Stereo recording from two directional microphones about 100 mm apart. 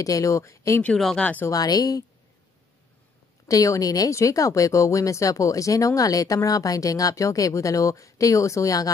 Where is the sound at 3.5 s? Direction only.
35° left (ahead or behind).